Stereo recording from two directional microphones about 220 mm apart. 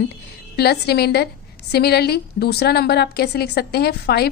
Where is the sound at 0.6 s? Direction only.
45° left (ahead or behind).